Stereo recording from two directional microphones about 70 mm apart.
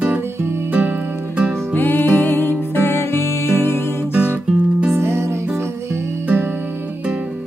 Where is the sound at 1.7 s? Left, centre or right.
Left.